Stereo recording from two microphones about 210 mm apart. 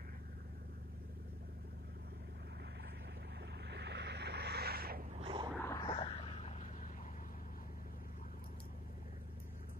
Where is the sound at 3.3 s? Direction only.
55° right (ahead or behind).